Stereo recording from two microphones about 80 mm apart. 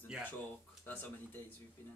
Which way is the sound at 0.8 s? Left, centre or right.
Left.